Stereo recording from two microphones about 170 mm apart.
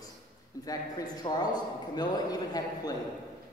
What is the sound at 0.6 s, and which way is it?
A man's voice, 20° left (ahead or behind).